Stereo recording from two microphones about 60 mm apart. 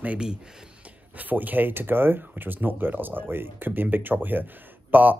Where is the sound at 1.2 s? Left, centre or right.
Right.